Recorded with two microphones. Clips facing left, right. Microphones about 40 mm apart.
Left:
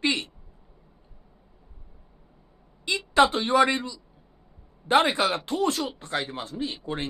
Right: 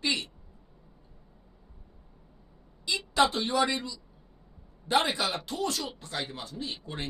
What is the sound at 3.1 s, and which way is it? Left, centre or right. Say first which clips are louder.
Speech: left 6 dB; left.